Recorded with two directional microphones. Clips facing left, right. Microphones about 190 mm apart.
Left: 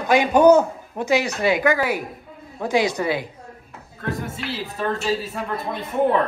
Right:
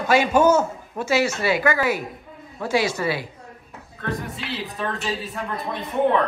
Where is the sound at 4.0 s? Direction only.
Centre (ahead or behind).